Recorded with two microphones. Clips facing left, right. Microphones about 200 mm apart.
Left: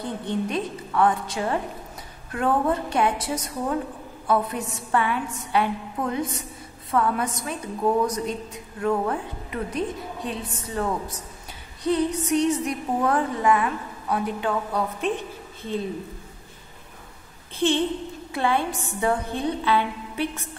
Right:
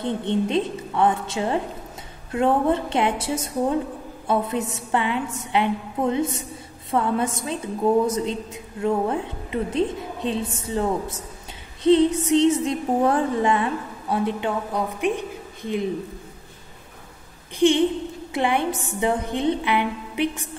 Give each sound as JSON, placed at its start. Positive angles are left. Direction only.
{"t": 0.0, "sound": "music", "side_deg": -25}
{"t": 17.6, "sound": "a woman's voice", "side_deg": -15}
{"t": 18.3, "sound": "music", "side_deg": -20}